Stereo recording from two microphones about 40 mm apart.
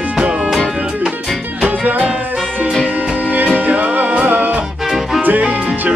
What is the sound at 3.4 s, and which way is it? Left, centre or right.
Music, right.